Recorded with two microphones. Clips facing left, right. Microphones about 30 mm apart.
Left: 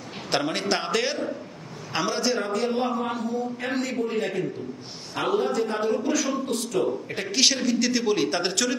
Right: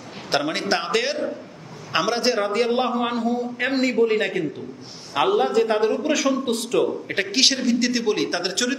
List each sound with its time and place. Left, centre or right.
0.4 s a man's voice: centre
2.1 s a man's voice: right
2.5 s a man's voice: right
7.3 s a man's voice: centre